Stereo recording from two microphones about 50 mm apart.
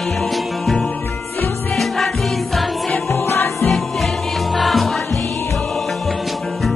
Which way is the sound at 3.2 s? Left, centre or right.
Left.